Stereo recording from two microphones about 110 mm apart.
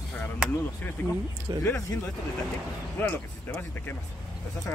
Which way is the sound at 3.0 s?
20° left (ahead or behind).